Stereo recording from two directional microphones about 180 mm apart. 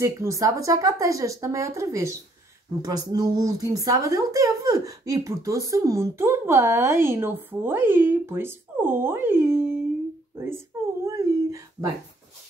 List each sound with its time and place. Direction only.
0.0 s speech: 15° right (ahead or behind)
11.1 s dog: 15° right (ahead or behind)